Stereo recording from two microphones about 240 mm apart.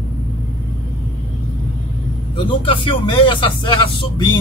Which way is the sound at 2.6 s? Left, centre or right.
Left.